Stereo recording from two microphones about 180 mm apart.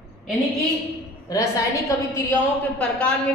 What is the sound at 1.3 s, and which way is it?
A woman's voice, 15° left (ahead or behind).